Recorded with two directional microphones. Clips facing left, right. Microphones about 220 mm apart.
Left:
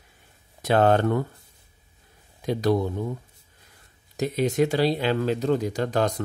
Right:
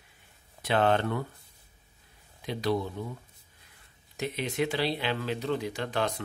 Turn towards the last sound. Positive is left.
turn(degrees=40)  # may be behind; listen again after turning